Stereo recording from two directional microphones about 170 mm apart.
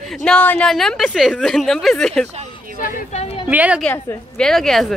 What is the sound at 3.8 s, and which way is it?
A woman's voice, 5° left (ahead or behind).